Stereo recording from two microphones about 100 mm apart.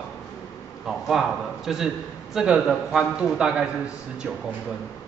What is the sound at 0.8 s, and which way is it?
A man's voice, 5° right (ahead or behind).